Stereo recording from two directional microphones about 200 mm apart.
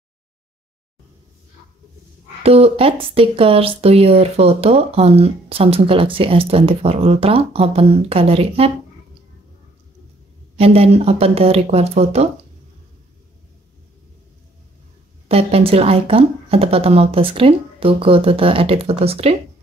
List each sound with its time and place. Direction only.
2.4 s speech: 30° right (ahead or behind)
10.6 s speech: 30° right (ahead or behind)
15.2 s speech: 30° right (ahead or behind)